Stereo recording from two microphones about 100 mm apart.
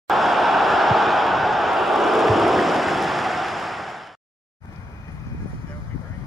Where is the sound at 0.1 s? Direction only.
Centre (ahead or behind).